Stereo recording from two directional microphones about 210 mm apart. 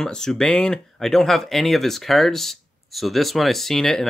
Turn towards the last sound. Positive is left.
turn(degrees=0)  # may be behind; listen again after turning